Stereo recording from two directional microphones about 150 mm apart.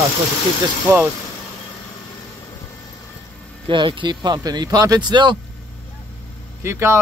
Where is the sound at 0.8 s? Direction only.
15° right (ahead or behind).